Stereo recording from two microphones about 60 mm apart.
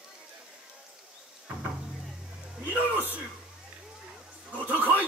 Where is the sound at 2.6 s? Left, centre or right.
Right.